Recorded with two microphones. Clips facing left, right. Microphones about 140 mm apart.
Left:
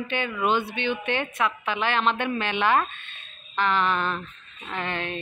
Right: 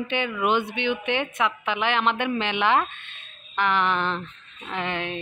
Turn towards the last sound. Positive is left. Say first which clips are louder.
# right 1 dB
turn(degrees=-15)  # may be behind; listen again after turning